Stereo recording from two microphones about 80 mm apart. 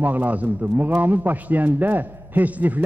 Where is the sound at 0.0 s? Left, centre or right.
Right.